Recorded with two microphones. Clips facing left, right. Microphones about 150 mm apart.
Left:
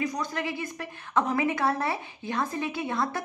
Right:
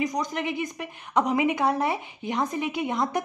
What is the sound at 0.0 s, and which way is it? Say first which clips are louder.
A woman's voice: right 3 dB; 15° right (ahead or behind).